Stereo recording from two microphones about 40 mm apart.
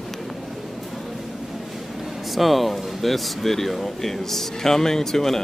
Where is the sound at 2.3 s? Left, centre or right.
Centre.